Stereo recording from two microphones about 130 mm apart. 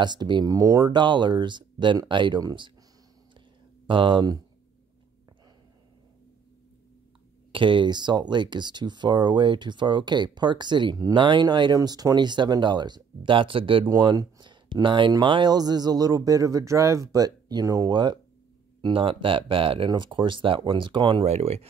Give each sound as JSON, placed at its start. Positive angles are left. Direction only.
{"t": 0.0, "sound": "speech", "side_deg": -35}
{"t": 3.3, "sound": "a sound", "side_deg": -40}
{"t": 7.5, "sound": "speech", "side_deg": -40}
{"t": 13.8, "sound": "speech", "side_deg": -30}
{"t": 21.3, "sound": "speech", "side_deg": -50}